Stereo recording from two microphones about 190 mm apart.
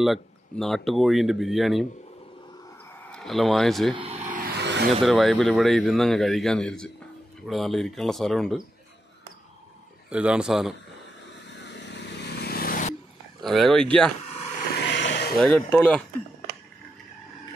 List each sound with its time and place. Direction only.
0.0 s a man's voice: centre (ahead or behind)
3.1 s speech: centre (ahead or behind)
3.9 s vehicle: 30° right (ahead or behind)
4.5 s a sound: 60° right (ahead or behind)
5.0 s a man's voice: centre (ahead or behind)
10.0 s a man's voice: 5° right (ahead or behind)
11.6 s vehicle: 65° left (ahead or behind); by 12.9 s 50° left (ahead or behind)
13.4 s a man's voice: centre (ahead or behind)
14.9 s a sound: 70° left (ahead or behind)
15.3 s a man's voice: 5° left (ahead or behind)